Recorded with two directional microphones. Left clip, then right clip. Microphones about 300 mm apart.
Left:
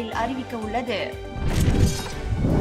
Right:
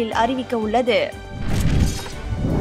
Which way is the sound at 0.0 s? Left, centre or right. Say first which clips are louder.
Right 7 dB; centre.